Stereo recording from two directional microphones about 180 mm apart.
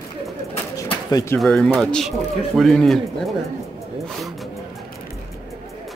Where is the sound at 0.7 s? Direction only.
15° left (ahead or behind).